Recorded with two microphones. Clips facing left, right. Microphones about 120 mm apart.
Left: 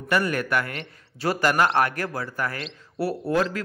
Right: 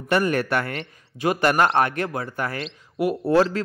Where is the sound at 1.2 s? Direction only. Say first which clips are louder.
Right 2 dB; 20° right (ahead or behind).